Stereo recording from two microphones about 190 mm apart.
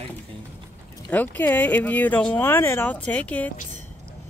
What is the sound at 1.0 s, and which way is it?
Speech, 10° left (ahead or behind).